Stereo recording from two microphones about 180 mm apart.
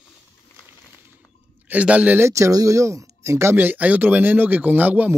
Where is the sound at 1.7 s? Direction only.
5° right (ahead or behind).